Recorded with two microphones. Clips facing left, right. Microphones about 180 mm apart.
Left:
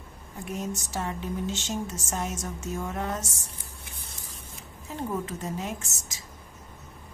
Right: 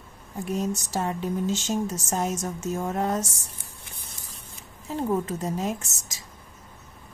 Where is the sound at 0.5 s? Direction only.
35° right (ahead or behind).